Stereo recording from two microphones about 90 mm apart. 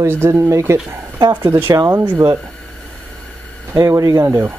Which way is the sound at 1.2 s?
50° right (ahead or behind).